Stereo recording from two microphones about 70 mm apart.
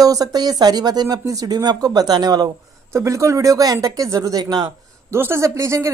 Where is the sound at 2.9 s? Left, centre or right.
Right.